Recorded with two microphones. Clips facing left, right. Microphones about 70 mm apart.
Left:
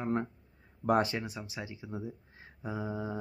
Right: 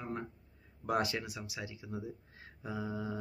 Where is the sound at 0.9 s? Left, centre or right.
Left.